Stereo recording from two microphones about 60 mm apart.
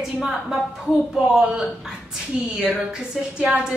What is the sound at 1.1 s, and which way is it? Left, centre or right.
A woman's voice, centre.